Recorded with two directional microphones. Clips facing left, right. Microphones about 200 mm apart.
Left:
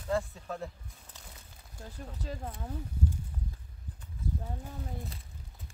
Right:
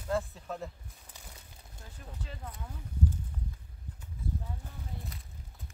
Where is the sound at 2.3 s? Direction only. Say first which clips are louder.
Left 7 dB; 40° left (ahead or behind).